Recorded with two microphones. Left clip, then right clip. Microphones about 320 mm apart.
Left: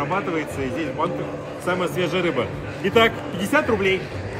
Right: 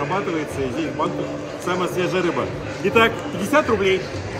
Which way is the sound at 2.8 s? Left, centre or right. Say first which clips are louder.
Right 1 dB; centre.